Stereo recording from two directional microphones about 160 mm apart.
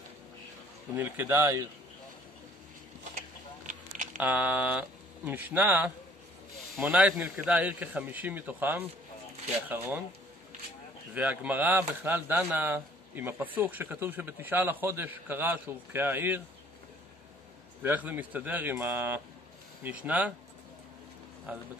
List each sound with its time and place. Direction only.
0.9 s speech: 15° right (ahead or behind)
3.2 s a sound: 55° right (ahead or behind)
4.2 s speech: 10° right (ahead or behind)
11.1 s speech: 10° right (ahead or behind)
17.8 s speech: 10° right (ahead or behind)
21.5 s speech: 10° right (ahead or behind)